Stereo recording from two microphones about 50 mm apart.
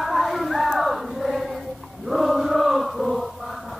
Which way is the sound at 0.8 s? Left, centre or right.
Centre.